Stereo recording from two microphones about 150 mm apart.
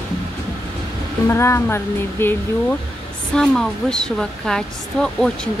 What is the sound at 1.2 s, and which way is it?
Speech, 15° left (ahead or behind).